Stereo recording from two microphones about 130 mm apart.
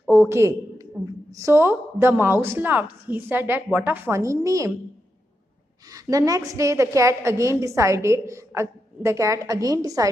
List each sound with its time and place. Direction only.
0.1 s a sound: 15° right (ahead or behind)
1.3 s a woman's voice: 20° right (ahead or behind)
5.9 s a woman's voice: 25° right (ahead or behind)